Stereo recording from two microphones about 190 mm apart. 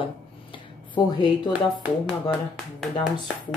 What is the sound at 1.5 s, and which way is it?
Speech, 5° right (ahead or behind).